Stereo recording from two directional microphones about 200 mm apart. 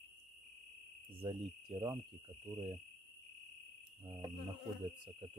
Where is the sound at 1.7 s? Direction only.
25° right (ahead or behind).